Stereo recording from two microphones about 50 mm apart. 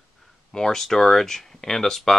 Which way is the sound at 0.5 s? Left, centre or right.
Centre.